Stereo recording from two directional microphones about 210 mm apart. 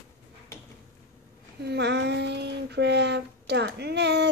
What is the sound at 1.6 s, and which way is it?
Child singing, 55° right (ahead or behind).